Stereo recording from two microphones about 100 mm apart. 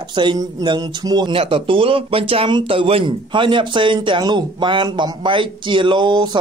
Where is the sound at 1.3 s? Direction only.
65° right (ahead or behind).